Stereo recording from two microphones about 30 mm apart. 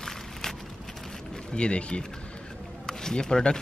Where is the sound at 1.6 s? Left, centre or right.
Left.